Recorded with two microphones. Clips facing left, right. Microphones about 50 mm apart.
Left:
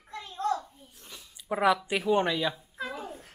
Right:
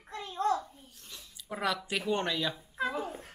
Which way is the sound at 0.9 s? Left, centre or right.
Centre.